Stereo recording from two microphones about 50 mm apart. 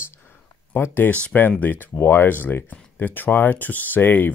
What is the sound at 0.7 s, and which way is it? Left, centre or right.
Speech, left.